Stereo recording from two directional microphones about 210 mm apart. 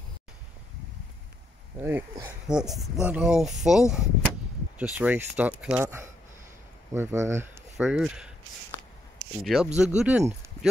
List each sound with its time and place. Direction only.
1.8 s speech: 10° right (ahead or behind)
7.7 s speech: centre (ahead or behind)
9.4 s speech: centre (ahead or behind)